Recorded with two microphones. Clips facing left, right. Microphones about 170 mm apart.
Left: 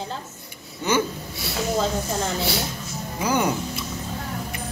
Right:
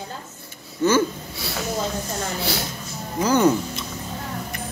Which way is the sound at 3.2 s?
10° left (ahead or behind).